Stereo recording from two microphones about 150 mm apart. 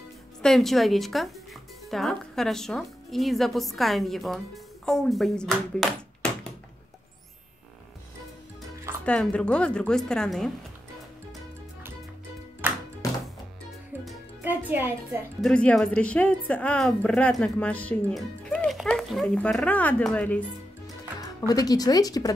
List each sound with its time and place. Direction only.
0.4 s a woman's voice: centre (ahead or behind)
9.0 s a woman's voice: 5° left (ahead or behind)
12.6 s music: 10° right (ahead or behind)
14.4 s music: 10° right (ahead or behind)
15.4 s a woman's voice: 5° left (ahead or behind)
21.2 s speech: 25° left (ahead or behind)